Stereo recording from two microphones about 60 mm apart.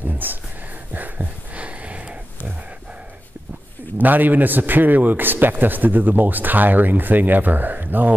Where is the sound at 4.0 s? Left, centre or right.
Right.